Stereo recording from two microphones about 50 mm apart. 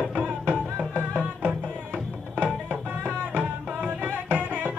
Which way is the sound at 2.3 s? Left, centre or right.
Right.